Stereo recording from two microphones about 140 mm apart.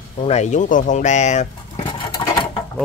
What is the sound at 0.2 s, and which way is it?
Speech, 55° left (ahead or behind).